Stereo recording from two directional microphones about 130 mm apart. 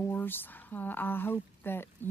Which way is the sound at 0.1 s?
15° left (ahead or behind).